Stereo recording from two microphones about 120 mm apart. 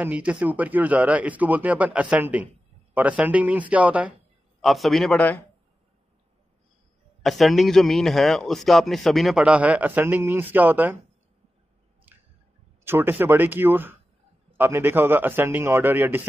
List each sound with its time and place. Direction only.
0.0 s speech: 10° right (ahead or behind)
4.6 s a man's voice: centre (ahead or behind)
7.2 s a man's voice: centre (ahead or behind); by 11.0 s 15° right (ahead or behind)
12.1 s squish: 15° right (ahead or behind)
12.8 s speech: 20° right (ahead or behind)